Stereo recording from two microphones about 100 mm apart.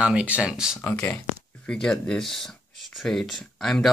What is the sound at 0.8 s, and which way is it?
Speech, 20° left (ahead or behind).